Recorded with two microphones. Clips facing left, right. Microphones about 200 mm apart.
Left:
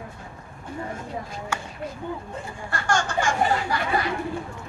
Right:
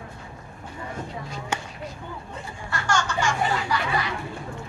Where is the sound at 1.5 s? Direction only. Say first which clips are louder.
Right 2 dB; 20° right (ahead or behind).